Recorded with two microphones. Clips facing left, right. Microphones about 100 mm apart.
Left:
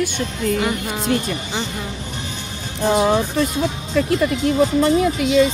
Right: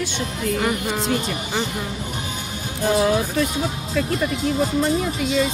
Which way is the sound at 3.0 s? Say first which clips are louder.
Left 2 dB; 30° left (ahead or behind).